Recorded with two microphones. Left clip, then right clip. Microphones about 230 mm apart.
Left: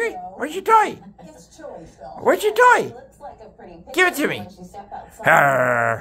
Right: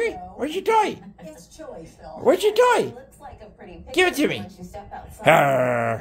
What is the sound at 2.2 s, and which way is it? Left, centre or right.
A woman's voice, centre.